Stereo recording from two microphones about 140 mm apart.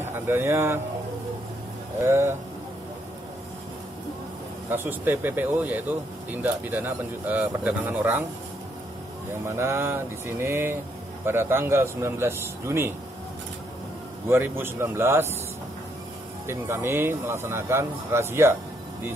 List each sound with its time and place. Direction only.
0.0 s speech: 15° right (ahead or behind)
2.0 s speech: 15° right (ahead or behind)
4.6 s speech: 15° right (ahead or behind)
9.5 s speech: 20° right (ahead or behind)
14.3 s speech: 15° right (ahead or behind)
16.4 s speech: 15° right (ahead or behind)